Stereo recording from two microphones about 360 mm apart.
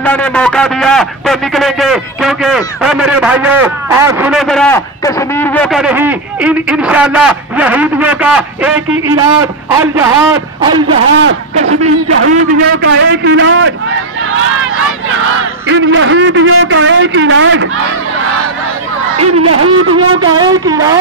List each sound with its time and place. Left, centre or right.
0.0 s a man's voice: centre
11.2 s a man's voice: right
15.7 s a man's voice: right
19.1 s a man's voice: right
20.3 s speech: centre